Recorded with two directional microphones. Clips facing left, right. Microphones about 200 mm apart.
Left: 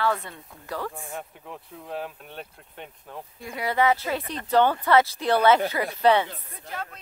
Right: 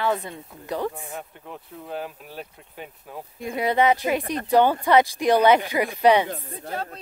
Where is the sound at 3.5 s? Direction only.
20° right (ahead or behind).